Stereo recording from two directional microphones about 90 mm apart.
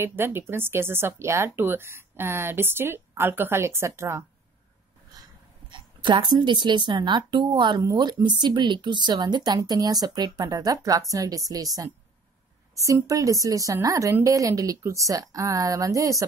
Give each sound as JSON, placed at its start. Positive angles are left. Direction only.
{"t": 0.0, "sound": "speech", "side_deg": -25}
{"t": 5.7, "sound": "a woman's voice", "side_deg": -60}